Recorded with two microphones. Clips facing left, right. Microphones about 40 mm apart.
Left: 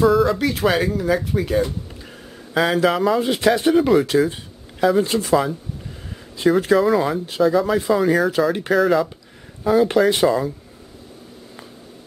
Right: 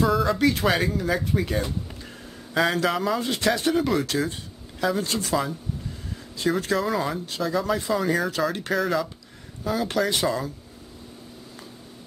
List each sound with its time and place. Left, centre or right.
0.0 s speech: centre
3.2 s speech: centre
5.3 s speech: centre
7.2 s speech: centre
9.8 s speech: left